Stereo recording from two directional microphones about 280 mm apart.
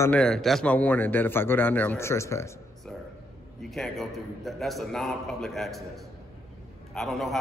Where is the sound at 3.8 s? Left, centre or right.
Centre.